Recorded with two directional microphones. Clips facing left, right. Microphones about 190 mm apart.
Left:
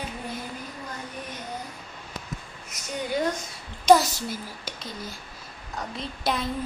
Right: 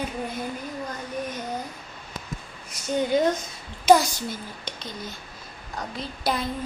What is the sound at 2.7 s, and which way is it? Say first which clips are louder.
Speech: right 6 dB; 20° right (ahead or behind).